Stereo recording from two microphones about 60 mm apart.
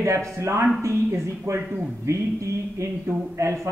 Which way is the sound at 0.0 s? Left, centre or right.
Right.